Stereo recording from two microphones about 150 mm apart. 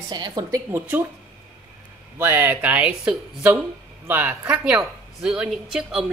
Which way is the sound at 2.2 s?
15° right (ahead or behind).